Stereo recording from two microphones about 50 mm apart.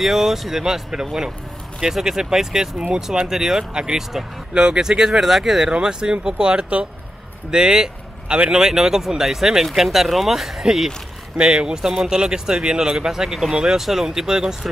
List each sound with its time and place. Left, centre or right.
0.0 s speech: centre